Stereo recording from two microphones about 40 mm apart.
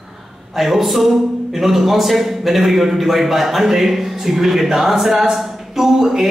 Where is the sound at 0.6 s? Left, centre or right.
Centre.